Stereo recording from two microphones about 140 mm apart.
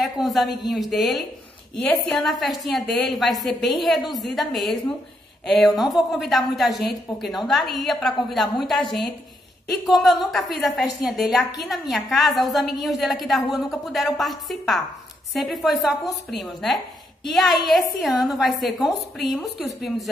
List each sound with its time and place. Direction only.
0.0 s a woman's voice: centre (ahead or behind)